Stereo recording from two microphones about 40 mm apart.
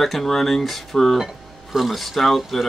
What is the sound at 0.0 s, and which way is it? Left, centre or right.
Speech, centre.